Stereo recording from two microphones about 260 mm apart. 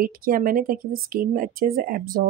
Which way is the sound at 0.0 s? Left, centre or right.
Right.